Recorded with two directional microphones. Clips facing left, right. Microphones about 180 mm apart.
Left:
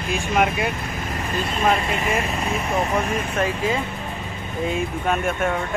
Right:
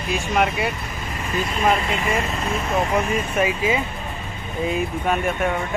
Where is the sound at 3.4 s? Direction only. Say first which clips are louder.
Right 2 dB; 5° right (ahead or behind).